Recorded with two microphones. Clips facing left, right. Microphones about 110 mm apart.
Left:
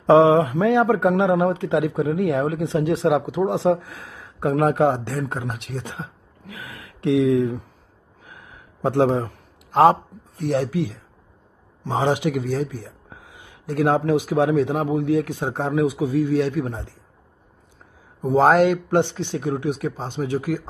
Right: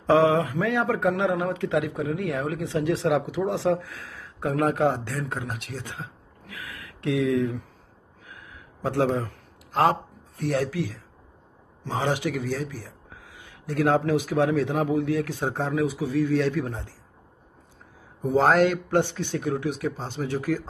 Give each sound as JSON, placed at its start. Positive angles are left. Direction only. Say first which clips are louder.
{"t": 0.0, "sound": "a man's voice", "louder": "left 6 dB", "side_deg": 20}
{"t": 8.8, "sound": "a man's voice", "louder": "left 5 dB", "side_deg": 25}
{"t": 18.5, "sound": "speech", "louder": "left 4 dB", "side_deg": 15}